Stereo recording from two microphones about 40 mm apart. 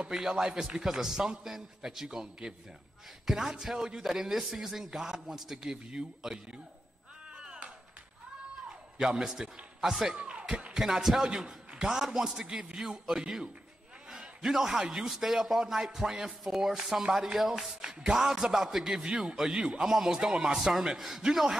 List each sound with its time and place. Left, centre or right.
0.1 s a man's voice: centre
7.3 s clapping: centre
8.6 s a man's voice: centre
10.3 s a sound: centre
10.7 s a man's voice: centre
14.4 s a man's voice: centre
20.5 s a man's voice: centre